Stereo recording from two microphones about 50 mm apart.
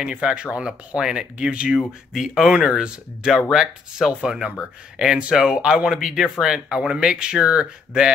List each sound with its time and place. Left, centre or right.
0.0 s speech: centre